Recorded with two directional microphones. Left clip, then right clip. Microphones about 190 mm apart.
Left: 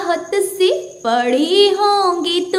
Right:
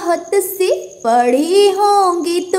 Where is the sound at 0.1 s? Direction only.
35° right (ahead or behind).